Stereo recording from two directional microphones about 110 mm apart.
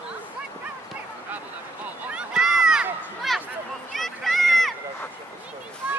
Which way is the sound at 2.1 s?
5° right (ahead or behind).